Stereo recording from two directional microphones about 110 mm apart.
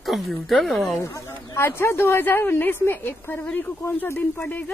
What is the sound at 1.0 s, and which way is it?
Speech, 30° left (ahead or behind).